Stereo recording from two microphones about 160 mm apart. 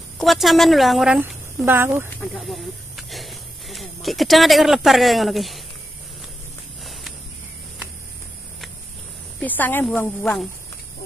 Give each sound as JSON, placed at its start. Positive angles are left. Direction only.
{"t": 0.2, "sound": "speech", "side_deg": 0}
{"t": 2.3, "sound": "speech", "side_deg": 0}
{"t": 9.4, "sound": "speech", "side_deg": 10}